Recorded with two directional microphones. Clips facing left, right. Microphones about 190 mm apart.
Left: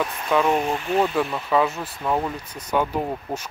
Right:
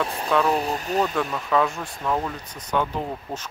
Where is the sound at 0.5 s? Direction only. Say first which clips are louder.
Left 2 dB; 35° right (ahead or behind).